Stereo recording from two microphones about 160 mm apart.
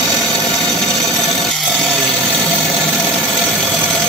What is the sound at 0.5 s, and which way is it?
Tools, centre (ahead or behind).